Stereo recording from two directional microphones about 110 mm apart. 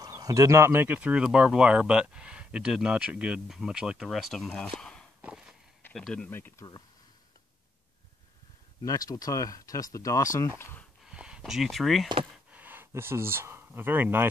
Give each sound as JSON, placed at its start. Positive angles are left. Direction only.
{"t": 0.0, "sound": "speech", "side_deg": -35}
{"t": 5.2, "sound": "walk", "side_deg": -5}
{"t": 5.9, "sound": "speech", "side_deg": 5}
{"t": 6.6, "sound": "speech", "side_deg": 40}
{"t": 8.8, "sound": "speech", "side_deg": 30}
{"t": 10.6, "sound": "speech", "side_deg": 20}
{"t": 11.1, "sound": "speech", "side_deg": -10}
{"t": 12.4, "sound": "speech", "side_deg": -15}